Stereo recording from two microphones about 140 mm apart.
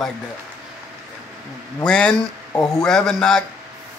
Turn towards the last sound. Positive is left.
turn(degrees=5)  # may be behind; listen again after turning